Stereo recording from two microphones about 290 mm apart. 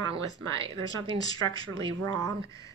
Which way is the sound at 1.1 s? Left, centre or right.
Centre.